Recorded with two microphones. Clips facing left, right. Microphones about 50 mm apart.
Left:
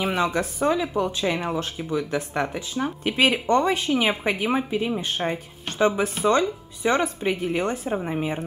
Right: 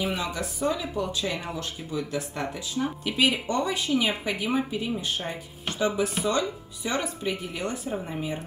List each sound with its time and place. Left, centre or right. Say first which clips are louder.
0.2 s speech: left 6 dB; left